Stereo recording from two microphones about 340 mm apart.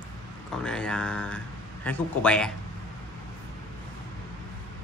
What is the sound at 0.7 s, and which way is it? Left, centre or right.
Speech, centre.